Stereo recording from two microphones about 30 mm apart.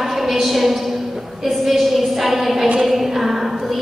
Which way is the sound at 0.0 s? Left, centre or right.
Centre.